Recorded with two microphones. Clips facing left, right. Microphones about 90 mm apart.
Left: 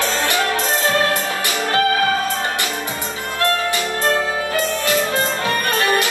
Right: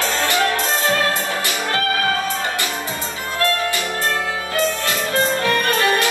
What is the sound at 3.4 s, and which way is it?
Music, 20° left (ahead or behind).